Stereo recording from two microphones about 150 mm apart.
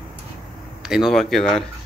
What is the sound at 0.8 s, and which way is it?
Speech, 5° right (ahead or behind).